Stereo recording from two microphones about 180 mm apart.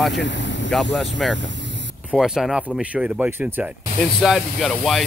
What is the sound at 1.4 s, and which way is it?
Vehicle, 90° right.